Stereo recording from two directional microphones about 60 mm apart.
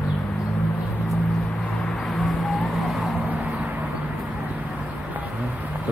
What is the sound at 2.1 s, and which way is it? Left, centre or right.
Vehicle, centre.